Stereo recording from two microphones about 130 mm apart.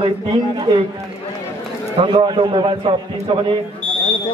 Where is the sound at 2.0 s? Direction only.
40° right (ahead or behind).